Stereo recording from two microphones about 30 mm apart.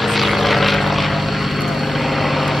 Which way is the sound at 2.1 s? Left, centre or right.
Centre.